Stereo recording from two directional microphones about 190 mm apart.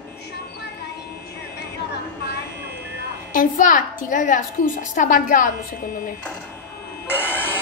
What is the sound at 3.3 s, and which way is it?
A woman's voice, 45° left (ahead or behind).